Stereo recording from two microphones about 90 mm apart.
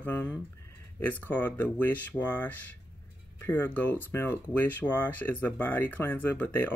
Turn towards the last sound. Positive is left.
turn(degrees=20)  # may be behind; listen again after turning